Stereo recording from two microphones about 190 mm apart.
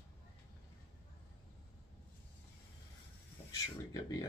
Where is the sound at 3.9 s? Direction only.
20° left (ahead or behind).